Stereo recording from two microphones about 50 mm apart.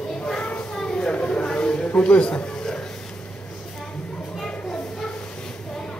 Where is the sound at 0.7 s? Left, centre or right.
Centre.